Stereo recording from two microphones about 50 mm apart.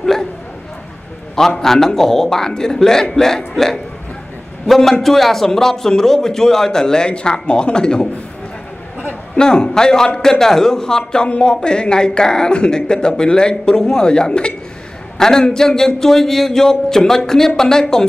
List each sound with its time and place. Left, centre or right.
0.0 s a sound: centre
1.6 s a man's voice: centre
9.3 s speech: centre